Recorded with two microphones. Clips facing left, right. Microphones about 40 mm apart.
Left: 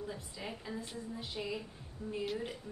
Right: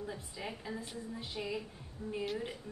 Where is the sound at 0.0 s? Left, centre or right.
Centre.